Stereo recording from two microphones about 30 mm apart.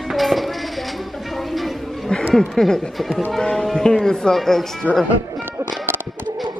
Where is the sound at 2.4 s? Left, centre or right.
Centre.